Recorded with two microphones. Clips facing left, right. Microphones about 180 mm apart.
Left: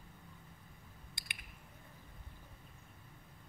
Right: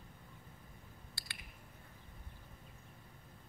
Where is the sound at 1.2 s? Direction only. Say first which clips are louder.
Left 2 dB; 20° left (ahead or behind).